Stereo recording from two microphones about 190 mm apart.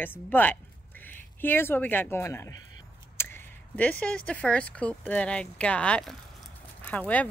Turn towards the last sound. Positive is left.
turn(degrees=10)  # may be behind; listen again after turning